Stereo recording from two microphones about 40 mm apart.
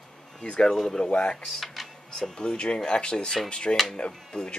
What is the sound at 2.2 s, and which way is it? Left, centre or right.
Speech, centre.